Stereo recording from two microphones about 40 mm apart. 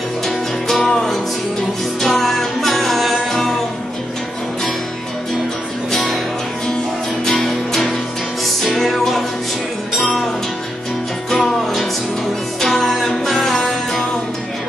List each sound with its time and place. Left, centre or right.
0.7 s music: centre
5.9 s music: centre
7.2 s music: centre
12.5 s music: centre